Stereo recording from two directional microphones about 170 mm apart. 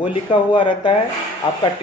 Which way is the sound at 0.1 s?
30° left (ahead or behind).